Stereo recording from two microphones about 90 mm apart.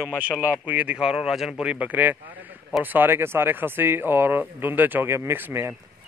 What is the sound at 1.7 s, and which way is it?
Speech, 15° right (ahead or behind).